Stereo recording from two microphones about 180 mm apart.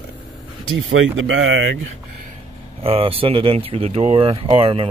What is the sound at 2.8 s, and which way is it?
Speech, 30° right (ahead or behind).